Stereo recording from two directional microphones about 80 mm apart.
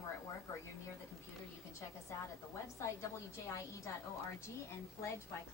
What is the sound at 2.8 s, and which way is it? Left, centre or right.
Speech, left.